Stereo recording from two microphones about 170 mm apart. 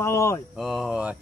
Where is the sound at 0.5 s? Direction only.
Centre (ahead or behind).